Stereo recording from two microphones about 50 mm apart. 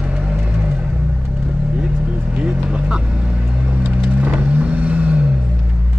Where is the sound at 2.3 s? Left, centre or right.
Centre.